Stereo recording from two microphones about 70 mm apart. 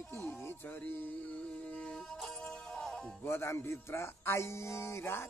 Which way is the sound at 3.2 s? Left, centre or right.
Left.